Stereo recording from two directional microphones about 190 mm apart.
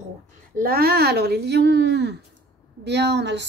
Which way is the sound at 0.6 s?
50° right (ahead or behind).